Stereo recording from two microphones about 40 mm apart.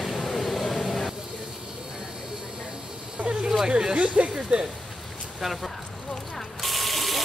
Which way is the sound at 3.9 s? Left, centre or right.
Right.